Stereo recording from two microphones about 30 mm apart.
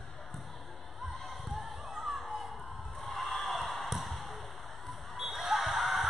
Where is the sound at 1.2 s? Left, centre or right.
Centre.